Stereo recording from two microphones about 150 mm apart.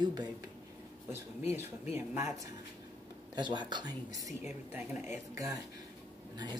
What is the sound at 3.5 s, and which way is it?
Speech, 30° right (ahead or behind).